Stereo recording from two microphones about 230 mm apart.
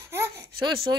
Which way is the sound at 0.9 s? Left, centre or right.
Centre.